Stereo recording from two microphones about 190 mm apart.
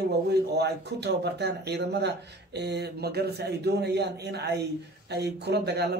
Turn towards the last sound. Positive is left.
turn(degrees=-60)  # may be behind; listen again after turning